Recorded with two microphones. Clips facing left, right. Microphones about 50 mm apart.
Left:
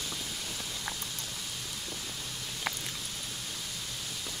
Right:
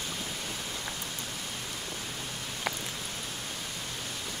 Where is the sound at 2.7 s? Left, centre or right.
Centre.